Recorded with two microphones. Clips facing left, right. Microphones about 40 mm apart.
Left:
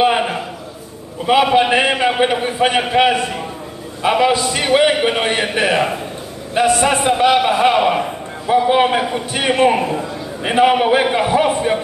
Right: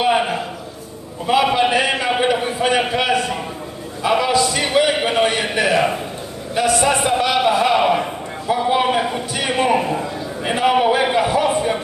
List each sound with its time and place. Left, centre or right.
1.2 s a man's voice: left
9.8 s a man's voice: centre
10.4 s a man's voice: left